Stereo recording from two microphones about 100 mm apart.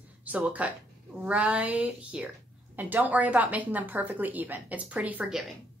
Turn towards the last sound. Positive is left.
turn(degrees=-15)  # may be behind; listen again after turning